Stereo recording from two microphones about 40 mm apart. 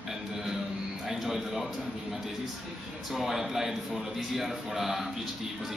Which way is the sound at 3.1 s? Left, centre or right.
Centre.